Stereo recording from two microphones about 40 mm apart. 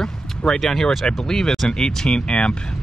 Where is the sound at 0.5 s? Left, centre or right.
Centre.